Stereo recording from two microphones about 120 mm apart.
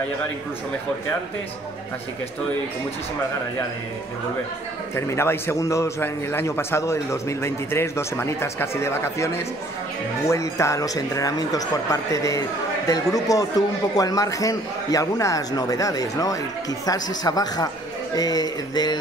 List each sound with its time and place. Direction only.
4.9 s a man's voice: 20° left (ahead or behind)